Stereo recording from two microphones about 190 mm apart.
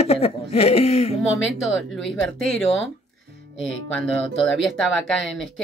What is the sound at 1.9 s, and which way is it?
Speech, centre (ahead or behind).